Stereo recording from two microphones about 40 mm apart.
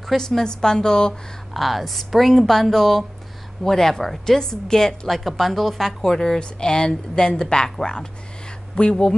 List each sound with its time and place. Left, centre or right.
0.0 s a woman's voice: centre
1.5 s a woman's voice: centre; by 9.0 s left